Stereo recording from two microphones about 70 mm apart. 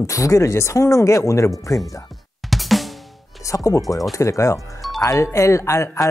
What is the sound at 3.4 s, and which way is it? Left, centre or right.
Speech, left.